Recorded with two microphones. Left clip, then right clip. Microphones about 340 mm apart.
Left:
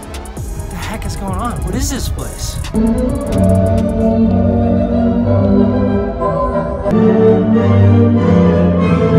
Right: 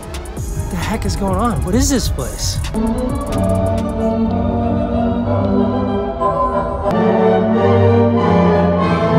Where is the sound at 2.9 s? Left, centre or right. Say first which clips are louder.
Left 3 dB; centre.